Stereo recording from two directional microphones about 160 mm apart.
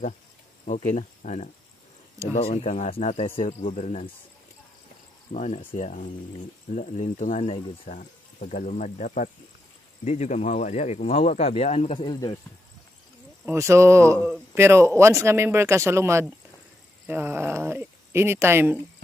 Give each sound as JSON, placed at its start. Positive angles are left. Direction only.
{"t": 0.8, "sound": "speech", "side_deg": 50}
{"t": 3.4, "sound": "speech", "side_deg": 50}
{"t": 5.3, "sound": "speech", "side_deg": 45}
{"t": 7.9, "sound": "speech", "side_deg": 55}
{"t": 13.5, "sound": "speech", "side_deg": -15}